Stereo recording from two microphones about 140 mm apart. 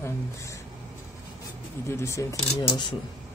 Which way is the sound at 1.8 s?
20° left (ahead or behind).